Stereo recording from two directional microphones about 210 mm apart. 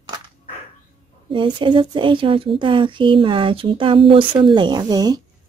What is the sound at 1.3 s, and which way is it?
Speech, 25° right (ahead or behind).